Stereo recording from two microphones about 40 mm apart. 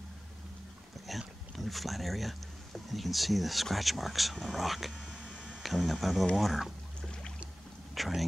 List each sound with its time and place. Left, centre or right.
1.0 s speech: centre
7.0 s trickle: left
8.0 s speech: centre